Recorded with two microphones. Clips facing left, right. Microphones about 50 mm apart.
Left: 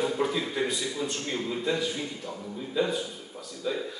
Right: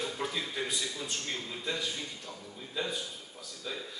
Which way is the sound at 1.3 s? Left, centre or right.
Centre.